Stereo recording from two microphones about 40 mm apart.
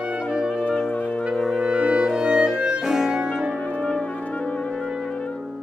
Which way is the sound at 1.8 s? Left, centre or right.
Right.